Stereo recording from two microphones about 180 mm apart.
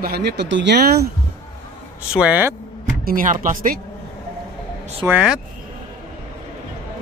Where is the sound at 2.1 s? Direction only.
5° right (ahead or behind).